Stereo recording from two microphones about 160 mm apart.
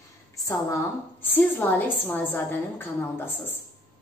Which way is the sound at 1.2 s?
10° left (ahead or behind).